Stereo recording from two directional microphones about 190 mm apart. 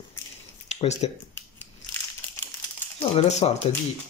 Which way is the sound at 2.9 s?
35° left (ahead or behind).